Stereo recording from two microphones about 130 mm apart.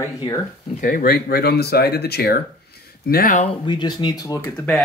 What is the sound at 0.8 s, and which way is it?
Speech, 90° left.